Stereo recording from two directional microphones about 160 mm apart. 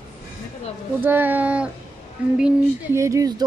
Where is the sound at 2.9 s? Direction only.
20° right (ahead or behind).